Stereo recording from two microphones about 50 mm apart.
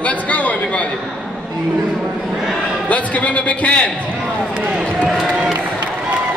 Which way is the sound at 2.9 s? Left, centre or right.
Left.